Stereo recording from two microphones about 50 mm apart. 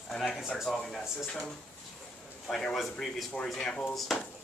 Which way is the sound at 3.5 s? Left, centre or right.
Centre.